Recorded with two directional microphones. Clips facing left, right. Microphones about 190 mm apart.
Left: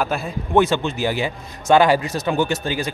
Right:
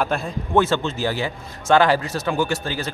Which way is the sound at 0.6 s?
15° left (ahead or behind).